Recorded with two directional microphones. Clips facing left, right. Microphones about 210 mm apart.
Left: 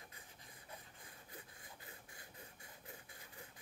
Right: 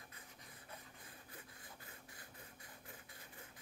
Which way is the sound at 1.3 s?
20° left (ahead or behind).